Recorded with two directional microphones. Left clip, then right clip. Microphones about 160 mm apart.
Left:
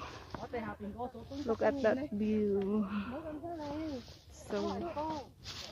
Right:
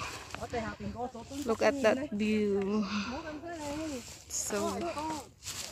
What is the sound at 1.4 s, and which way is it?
Speech, 25° right (ahead or behind).